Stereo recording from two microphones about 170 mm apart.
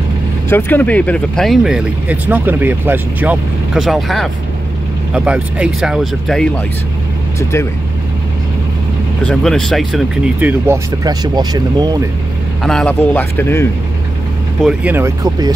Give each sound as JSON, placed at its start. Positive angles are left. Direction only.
{"t": 0.5, "sound": "speech", "side_deg": 10}
{"t": 9.2, "sound": "speech", "side_deg": 5}
{"t": 11.1, "sound": "speech", "side_deg": -25}
{"t": 12.6, "sound": "a man's voice", "side_deg": 5}
{"t": 14.6, "sound": "speech", "side_deg": -5}